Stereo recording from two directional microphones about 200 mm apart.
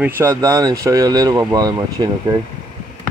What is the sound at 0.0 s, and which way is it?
Speech, 15° right (ahead or behind).